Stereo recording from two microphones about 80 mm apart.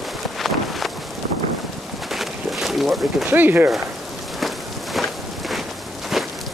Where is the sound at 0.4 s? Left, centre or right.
Centre.